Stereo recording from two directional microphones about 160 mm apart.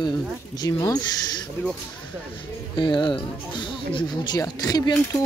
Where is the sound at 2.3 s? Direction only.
30° left (ahead or behind).